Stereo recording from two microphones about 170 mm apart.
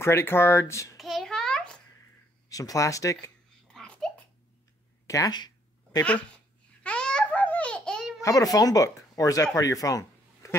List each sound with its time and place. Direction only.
0.0 s speech: 15° left (ahead or behind)
0.9 s a sound: centre (ahead or behind)
2.5 s speech: 20° left (ahead or behind)
3.6 s babbling: 5° left (ahead or behind)
5.0 s speech: 20° left (ahead or behind)
6.3 s babbling: 5° left (ahead or behind)
8.2 s speech: 20° left (ahead or behind)
9.6 s a sound: 20° left (ahead or behind)